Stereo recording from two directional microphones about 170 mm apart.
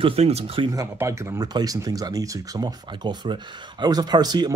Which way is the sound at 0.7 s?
15° right (ahead or behind).